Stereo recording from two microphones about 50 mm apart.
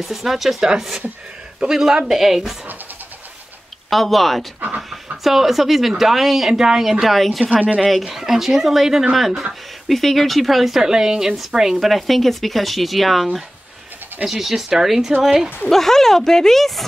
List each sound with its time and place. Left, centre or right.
0.0 s a woman's voice: centre
3.9 s a woman's voice: centre
4.6 s speech: right
5.1 s a woman's voice: centre
7.4 s speech: right
7.8 s a woman's voice: centre
15.7 s speech: centre